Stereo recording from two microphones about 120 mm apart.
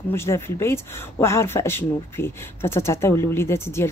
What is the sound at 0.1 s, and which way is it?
Speech, 20° left (ahead or behind).